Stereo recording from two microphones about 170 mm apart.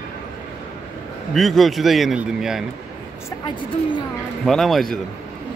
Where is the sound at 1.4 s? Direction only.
Centre (ahead or behind).